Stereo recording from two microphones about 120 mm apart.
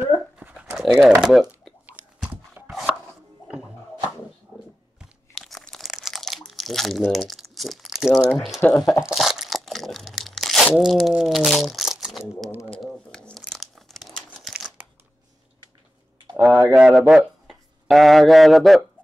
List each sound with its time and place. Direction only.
0.4 s dog: 10° right (ahead or behind)
0.7 s speech: 5° right (ahead or behind)
2.2 s a sound: 15° right (ahead or behind)
5.4 s crumpling: 5° left (ahead or behind)
8.3 s speech: centre (ahead or behind)
8.5 s speech: 20° left (ahead or behind)
9.0 s crumpling: centre (ahead or behind)
16.3 s speech: 20° right (ahead or behind)
16.7 s speech: 5° right (ahead or behind)